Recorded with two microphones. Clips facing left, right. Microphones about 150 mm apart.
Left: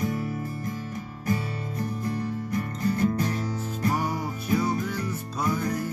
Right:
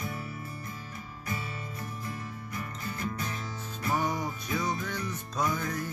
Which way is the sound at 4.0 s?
10° left (ahead or behind).